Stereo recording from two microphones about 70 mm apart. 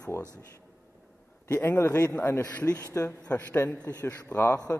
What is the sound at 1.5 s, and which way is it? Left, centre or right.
A man's voice, left.